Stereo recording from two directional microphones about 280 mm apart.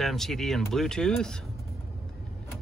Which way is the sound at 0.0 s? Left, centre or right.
Centre.